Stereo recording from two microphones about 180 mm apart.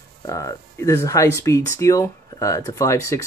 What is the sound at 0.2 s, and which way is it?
Speech, 20° left (ahead or behind).